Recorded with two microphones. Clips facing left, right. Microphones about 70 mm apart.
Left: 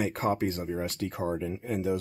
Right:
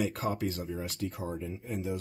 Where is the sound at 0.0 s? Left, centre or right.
Left.